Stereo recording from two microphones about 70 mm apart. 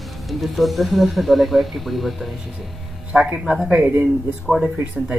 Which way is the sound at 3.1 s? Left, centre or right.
Centre.